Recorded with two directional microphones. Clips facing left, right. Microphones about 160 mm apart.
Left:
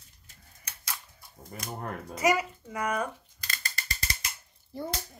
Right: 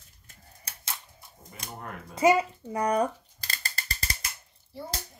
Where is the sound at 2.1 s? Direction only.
30° right (ahead or behind).